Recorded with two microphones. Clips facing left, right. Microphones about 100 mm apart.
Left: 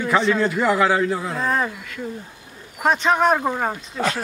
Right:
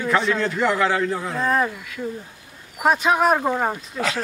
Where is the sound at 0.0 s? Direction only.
Centre (ahead or behind).